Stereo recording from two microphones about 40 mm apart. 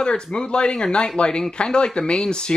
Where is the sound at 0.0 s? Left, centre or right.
Left.